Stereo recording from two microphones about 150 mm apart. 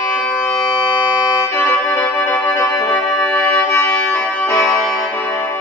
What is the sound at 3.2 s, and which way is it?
Music, 5° left (ahead or behind).